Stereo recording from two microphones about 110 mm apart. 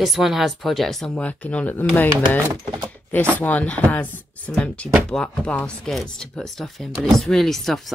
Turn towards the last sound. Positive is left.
turn(degrees=0)  # may be behind; listen again after turning